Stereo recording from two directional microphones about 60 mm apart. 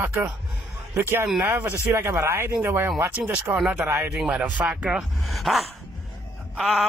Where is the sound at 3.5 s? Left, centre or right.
Centre.